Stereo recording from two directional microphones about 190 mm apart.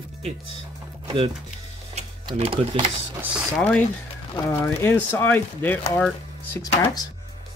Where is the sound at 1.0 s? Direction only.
30° right (ahead or behind).